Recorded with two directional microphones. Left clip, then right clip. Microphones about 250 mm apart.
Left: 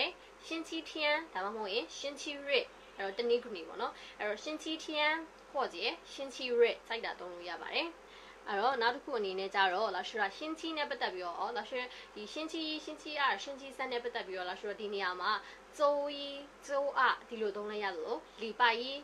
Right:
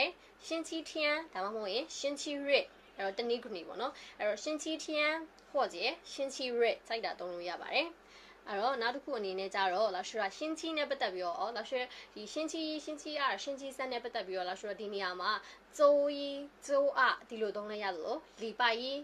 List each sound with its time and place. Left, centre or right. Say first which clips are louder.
0.0 s a woman's voice: right 2 dB; right
8.5 s a woman's voice: left 2 dB; centre